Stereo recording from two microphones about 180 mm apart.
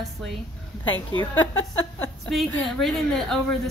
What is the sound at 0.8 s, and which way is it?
A woman's voice, 90° left.